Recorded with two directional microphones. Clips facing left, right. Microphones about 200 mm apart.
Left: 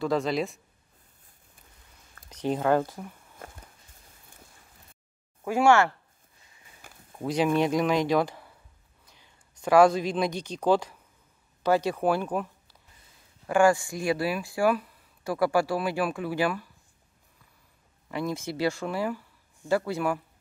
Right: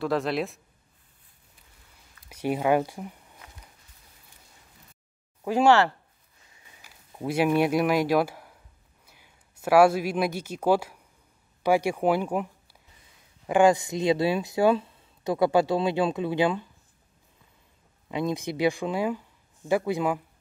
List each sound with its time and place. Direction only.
0.0 s speech: centre (ahead or behind)
2.2 s speech: 10° right (ahead or behind)
3.4 s walk: 50° left (ahead or behind)
6.8 s a sound: 50° left (ahead or behind)
7.2 s speech: 10° right (ahead or behind)
13.5 s speech: 20° right (ahead or behind)
18.0 s speech: 20° right (ahead or behind)